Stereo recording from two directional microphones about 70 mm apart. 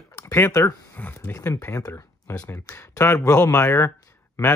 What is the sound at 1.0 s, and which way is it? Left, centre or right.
Speech, left.